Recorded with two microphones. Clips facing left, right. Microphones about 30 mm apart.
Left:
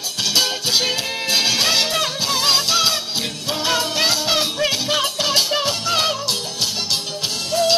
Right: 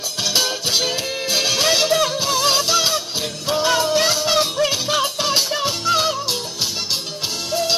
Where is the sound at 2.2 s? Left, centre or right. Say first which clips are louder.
Even; left.